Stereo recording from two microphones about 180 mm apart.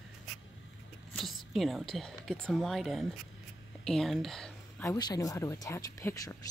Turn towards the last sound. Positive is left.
turn(degrees=15)  # may be behind; listen again after turning